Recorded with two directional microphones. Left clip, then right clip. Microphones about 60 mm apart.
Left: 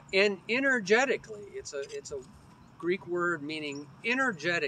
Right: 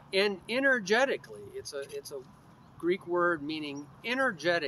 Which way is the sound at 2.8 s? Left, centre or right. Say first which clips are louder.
Right 2 dB; right.